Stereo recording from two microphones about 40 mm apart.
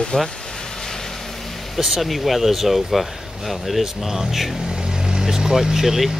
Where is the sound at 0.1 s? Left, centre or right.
Left.